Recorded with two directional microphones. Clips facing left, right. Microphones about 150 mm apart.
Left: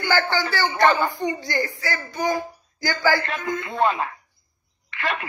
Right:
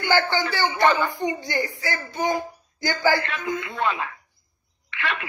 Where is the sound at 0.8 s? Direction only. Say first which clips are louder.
Left 1 dB; 45° left (ahead or behind).